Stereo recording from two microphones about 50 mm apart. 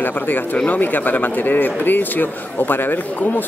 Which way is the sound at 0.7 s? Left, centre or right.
Left.